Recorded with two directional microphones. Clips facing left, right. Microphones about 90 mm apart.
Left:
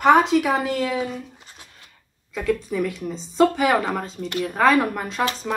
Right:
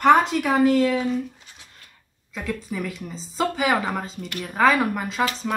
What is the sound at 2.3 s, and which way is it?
Speech, centre (ahead or behind).